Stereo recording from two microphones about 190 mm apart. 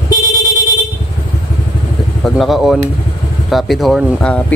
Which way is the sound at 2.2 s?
Centre (ahead or behind).